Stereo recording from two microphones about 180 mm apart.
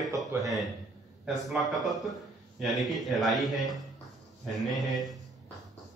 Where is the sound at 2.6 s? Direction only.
Centre (ahead or behind).